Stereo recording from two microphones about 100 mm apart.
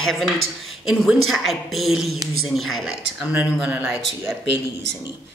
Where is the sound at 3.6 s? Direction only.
10° right (ahead or behind).